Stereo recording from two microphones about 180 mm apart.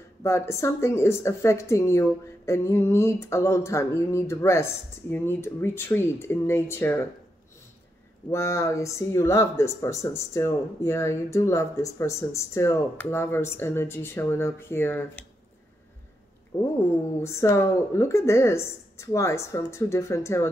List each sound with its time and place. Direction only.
0.2 s speech: 15° left (ahead or behind)
8.3 s speech: 15° left (ahead or behind)
17.2 s speech: 15° left (ahead or behind)